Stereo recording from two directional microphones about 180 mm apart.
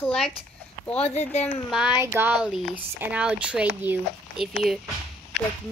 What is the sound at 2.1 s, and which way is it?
Speech, 5° right (ahead or behind).